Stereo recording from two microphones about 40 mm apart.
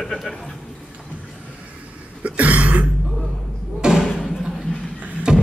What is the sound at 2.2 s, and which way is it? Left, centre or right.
Cough, right.